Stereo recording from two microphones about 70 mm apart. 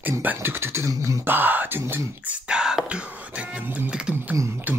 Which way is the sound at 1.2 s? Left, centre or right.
Right.